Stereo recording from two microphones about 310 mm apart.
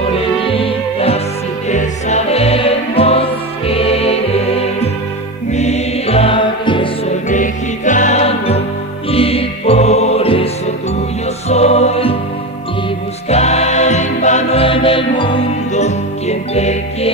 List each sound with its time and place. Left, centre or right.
0.5 s music: centre
13.3 s music: left